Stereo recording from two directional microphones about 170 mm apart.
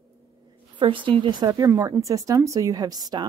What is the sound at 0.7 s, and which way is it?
Speech, 30° right (ahead or behind).